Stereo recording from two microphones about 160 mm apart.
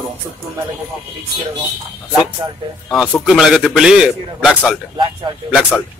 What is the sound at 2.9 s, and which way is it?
A man's voice, centre (ahead or behind).